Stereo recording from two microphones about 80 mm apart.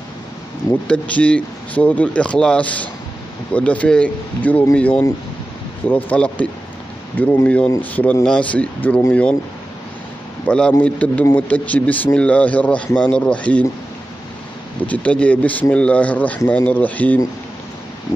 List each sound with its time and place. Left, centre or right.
0.8 s a man's voice: centre
10.4 s a man's voice: centre
14.9 s a man's voice: centre